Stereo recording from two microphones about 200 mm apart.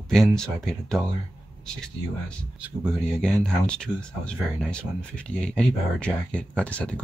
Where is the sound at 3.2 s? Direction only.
5° left (ahead or behind).